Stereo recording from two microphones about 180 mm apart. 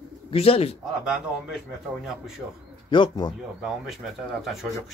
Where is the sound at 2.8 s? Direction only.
25° left (ahead or behind).